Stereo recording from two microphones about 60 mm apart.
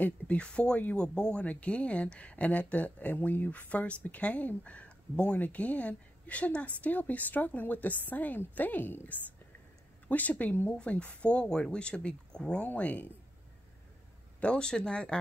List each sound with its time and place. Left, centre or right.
0.0 s speech: left
10.7 s speech: centre
12.6 s speech: left
14.4 s speech: centre